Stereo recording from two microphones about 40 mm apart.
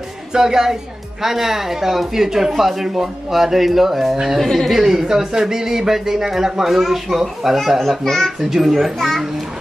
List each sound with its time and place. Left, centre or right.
0.3 s speech: centre
4.4 s a child's voice: centre
4.7 s speech: centre
8.0 s a child's voice: centre
8.4 s a child's voice: centre